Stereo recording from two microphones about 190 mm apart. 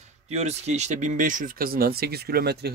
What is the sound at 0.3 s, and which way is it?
Speech, 35° right (ahead or behind).